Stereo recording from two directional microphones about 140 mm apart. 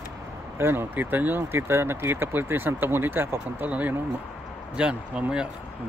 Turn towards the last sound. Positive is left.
turn(degrees=-5)  # may be behind; listen again after turning